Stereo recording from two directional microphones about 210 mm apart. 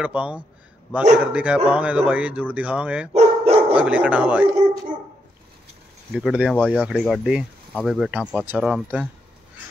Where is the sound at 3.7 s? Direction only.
5° right (ahead or behind).